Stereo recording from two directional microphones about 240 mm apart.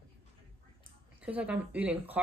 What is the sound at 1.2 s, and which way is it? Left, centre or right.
Speech, centre.